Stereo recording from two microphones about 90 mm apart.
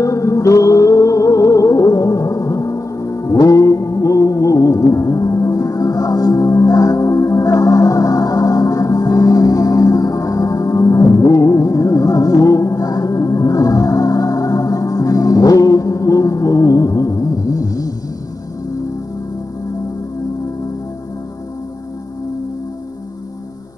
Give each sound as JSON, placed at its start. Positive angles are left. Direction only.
{"t": 0.0, "sound": "music", "side_deg": 35}